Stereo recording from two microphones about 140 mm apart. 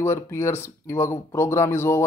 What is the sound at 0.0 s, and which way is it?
Speech, 20° left (ahead or behind).